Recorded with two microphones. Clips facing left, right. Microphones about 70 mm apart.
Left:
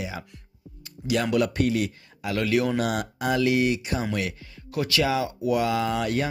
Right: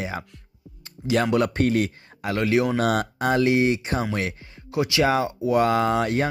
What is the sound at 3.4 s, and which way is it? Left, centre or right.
Speech, right.